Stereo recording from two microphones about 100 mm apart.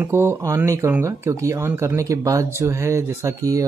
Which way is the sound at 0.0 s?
25° right (ahead or behind).